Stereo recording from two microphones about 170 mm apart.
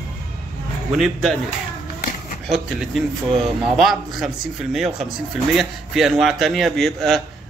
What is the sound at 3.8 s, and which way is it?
A man's voice, centre (ahead or behind).